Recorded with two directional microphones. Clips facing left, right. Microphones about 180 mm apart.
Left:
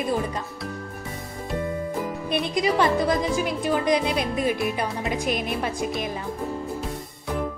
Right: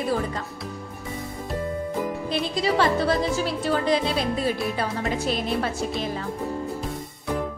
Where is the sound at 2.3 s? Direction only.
15° left (ahead or behind).